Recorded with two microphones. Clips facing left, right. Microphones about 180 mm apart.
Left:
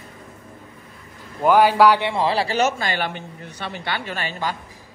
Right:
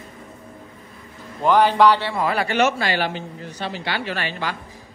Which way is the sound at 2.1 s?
30° left (ahead or behind).